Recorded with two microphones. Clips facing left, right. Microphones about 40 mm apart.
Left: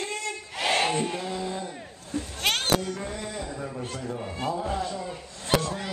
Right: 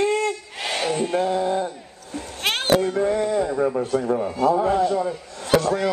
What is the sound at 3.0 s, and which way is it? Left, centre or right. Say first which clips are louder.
Speech: right 13 dB; right.